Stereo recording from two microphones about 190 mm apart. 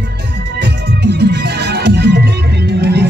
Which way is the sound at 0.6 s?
60° right (ahead or behind).